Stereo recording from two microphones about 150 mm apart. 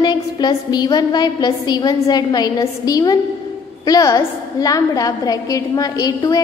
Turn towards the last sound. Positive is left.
turn(degrees=25)  # may be behind; listen again after turning